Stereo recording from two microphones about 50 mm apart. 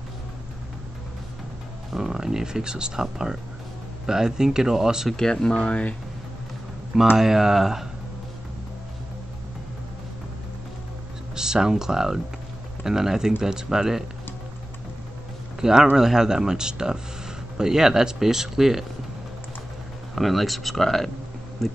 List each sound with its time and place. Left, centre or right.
1.9 s speech: centre
5.1 s speech: centre
7.2 s speech: centre
11.3 s speech: centre
15.6 s speech: centre
20.2 s speech: centre